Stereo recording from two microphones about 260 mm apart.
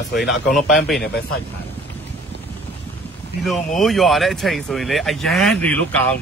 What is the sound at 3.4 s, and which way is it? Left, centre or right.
Speech, centre.